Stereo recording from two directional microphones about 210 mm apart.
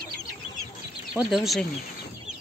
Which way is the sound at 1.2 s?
Centre (ahead or behind).